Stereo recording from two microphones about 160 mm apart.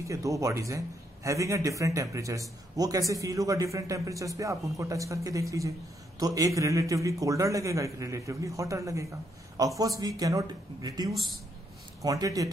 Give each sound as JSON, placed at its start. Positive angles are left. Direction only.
{"t": 0.0, "sound": "a man's voice", "side_deg": -20}